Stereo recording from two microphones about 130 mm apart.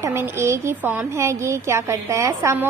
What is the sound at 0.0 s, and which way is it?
A woman's voice, 20° right (ahead or behind).